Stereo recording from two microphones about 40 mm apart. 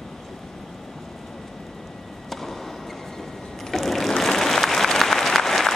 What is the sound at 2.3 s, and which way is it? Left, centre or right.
Chop, centre.